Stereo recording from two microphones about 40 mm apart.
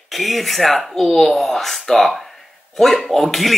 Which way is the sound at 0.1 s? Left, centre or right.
Centre.